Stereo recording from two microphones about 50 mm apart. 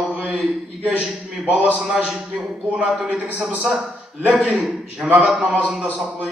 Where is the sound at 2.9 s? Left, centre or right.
Centre.